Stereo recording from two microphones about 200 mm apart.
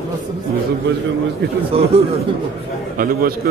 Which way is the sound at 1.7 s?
30° right (ahead or behind).